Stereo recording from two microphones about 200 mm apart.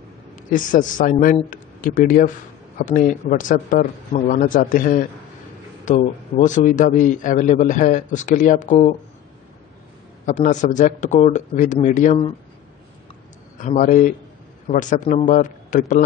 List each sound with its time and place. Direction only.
0.5 s a man's voice: 40° left (ahead or behind)
10.2 s a man's voice: 35° left (ahead or behind)
13.6 s a man's voice: 40° left (ahead or behind)